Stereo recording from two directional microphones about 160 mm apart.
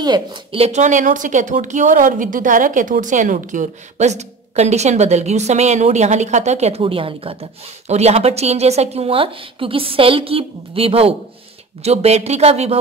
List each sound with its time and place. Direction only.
0.0 s a woman's voice: 30° right (ahead or behind)